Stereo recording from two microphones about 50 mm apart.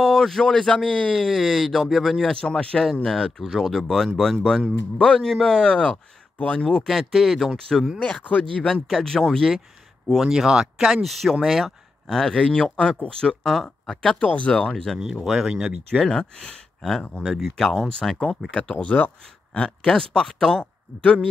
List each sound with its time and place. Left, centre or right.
0.0 s a man's voice: centre
1.2 s speech: centre
3.8 s speech: centre
7.5 s speech: centre
8.2 s speech: left
8.8 s speech: centre
10.0 s speech: centre
12.1 s speech: centre
14.2 s speech: left
14.6 s speech: centre
15.1 s speech: centre
15.9 s speech: centre
18.5 s speech: left
19.9 s speech: centre